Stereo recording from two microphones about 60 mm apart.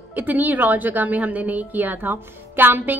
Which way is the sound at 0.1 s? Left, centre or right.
Right.